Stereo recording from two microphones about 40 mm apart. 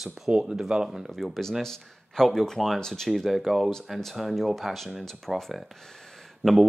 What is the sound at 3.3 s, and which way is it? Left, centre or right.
A man's voice, centre.